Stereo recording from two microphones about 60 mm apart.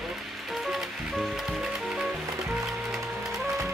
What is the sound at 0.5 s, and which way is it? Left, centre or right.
Music, centre.